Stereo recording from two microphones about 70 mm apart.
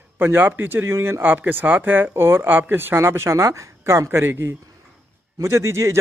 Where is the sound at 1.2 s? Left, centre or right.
Right.